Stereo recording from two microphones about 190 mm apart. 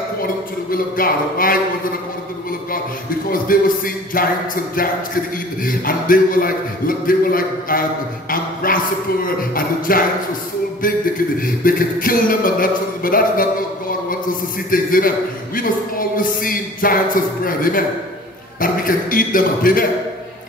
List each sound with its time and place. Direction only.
0.7 s a man's voice: 50° left (ahead or behind)
3.3 s a man's voice: 50° left (ahead or behind)
11.3 s a man's voice: 45° left (ahead or behind)
14.7 s a man's voice: 50° left (ahead or behind)